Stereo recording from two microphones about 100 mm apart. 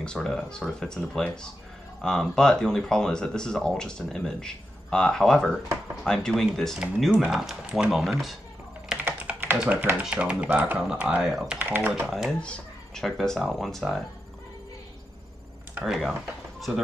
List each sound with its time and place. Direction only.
0.0 s speech: 5° left (ahead or behind)
8.8 s computer keyboard: 15° right (ahead or behind)
9.7 s speech: 20° right (ahead or behind)
11.5 s speech: 15° right (ahead or behind)
12.1 s speech: centre (ahead or behind)
15.8 s speech: centre (ahead or behind)